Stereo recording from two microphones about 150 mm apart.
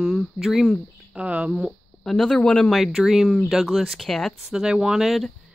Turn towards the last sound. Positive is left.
turn(degrees=0)  # may be behind; listen again after turning